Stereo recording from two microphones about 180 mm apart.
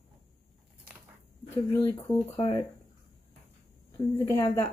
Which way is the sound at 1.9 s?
25° left (ahead or behind).